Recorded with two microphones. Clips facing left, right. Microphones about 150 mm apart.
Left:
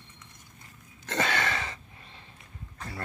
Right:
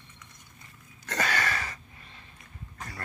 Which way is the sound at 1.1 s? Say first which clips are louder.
Left 1 dB; 25° left (ahead or behind).